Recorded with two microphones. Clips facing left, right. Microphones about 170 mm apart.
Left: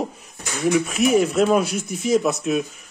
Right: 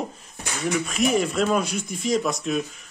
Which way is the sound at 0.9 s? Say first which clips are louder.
Left 4 dB; 5° left (ahead or behind).